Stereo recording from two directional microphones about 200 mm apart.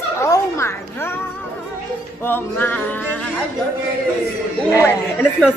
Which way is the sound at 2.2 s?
10° left (ahead or behind).